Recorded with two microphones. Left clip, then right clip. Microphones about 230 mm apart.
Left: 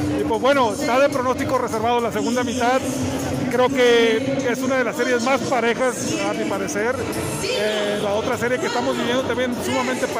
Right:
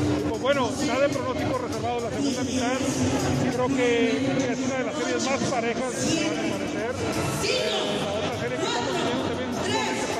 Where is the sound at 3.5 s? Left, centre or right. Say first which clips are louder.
Left 9 dB; left.